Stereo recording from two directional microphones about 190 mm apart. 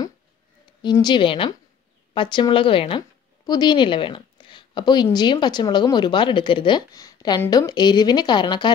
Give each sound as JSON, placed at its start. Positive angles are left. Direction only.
{"t": 0.8, "sound": "a woman's voice", "side_deg": 25}